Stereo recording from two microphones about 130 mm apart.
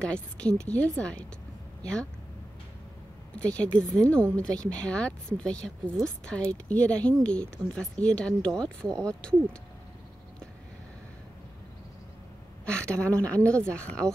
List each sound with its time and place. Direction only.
0.0 s speech: 10° left (ahead or behind)
3.5 s speech: 10° left (ahead or behind)
12.6 s a woman's voice: 5° left (ahead or behind)